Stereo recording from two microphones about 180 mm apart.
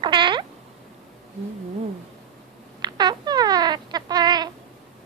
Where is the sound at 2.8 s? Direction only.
25° right (ahead or behind).